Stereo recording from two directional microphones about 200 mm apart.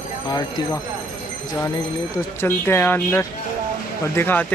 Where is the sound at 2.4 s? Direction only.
10° left (ahead or behind).